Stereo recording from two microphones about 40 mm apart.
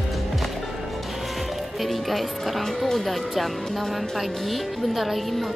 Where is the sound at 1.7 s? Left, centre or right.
Centre.